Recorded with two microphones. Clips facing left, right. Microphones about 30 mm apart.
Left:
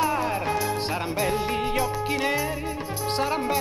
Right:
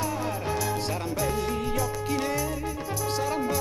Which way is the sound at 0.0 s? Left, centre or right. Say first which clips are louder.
Left 5 dB; left.